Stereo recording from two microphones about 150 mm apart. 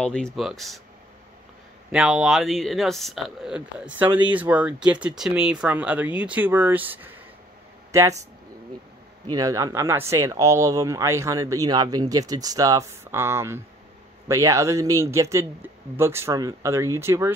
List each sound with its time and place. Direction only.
0.0 s speech: 5° left (ahead or behind)
1.9 s speech: 5° right (ahead or behind)
9.3 s speech: 25° right (ahead or behind)